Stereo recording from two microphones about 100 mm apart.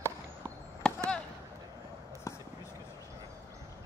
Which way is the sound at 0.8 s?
10° left (ahead or behind).